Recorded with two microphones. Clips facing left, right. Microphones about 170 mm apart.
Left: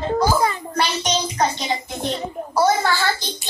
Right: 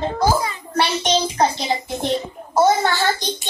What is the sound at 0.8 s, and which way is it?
A child's voice, 30° right (ahead or behind).